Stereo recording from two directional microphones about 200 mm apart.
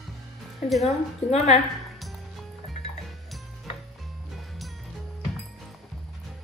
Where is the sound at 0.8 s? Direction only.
35° left (ahead or behind).